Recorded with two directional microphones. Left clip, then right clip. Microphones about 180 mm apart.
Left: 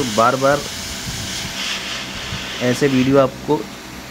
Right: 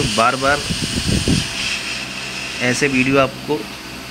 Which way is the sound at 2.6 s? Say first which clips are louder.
Even; 20° left (ahead or behind).